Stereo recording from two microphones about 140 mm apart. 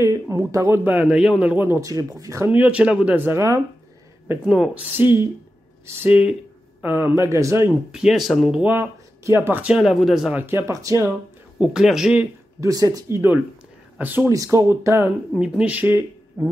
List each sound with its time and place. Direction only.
0.0 s a man's voice: 20° right (ahead or behind)
7.9 s speech: 5° right (ahead or behind)
8.6 s speech: 15° right (ahead or behind)
10.4 s a man's voice: 20° right (ahead or behind)
11.5 s speech: 5° right (ahead or behind)
12.5 s a man's voice: 25° right (ahead or behind)
15.3 s speech: 5° right (ahead or behind)